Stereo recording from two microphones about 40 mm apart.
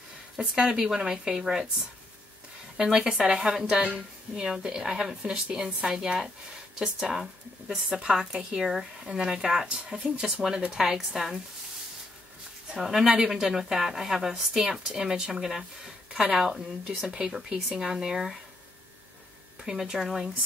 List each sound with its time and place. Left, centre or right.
0.4 s a woman's voice: centre
2.8 s a woman's voice: centre
12.7 s a woman's voice: centre
19.6 s a woman's voice: centre